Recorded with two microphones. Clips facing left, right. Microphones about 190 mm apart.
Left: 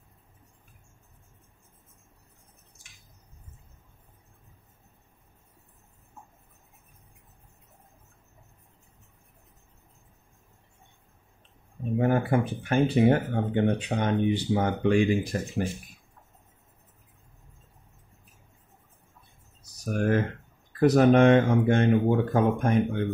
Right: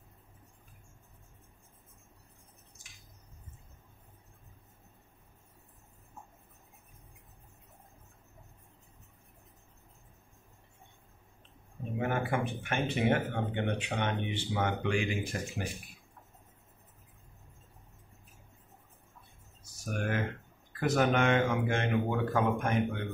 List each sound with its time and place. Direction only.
12.0 s speech: 40° left (ahead or behind)
19.6 s a sound: 40° left (ahead or behind)
20.8 s speech: 35° left (ahead or behind)